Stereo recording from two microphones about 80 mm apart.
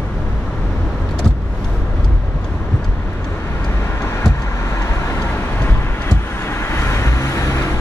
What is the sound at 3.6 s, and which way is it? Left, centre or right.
Vehicle, left.